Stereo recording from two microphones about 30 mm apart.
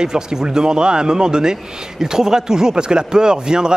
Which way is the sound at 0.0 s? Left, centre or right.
Right.